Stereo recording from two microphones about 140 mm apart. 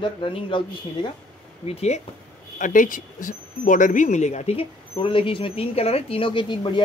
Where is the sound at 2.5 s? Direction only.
70° left (ahead or behind).